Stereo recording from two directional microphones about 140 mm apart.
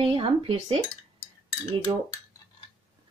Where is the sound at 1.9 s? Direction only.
30° right (ahead or behind).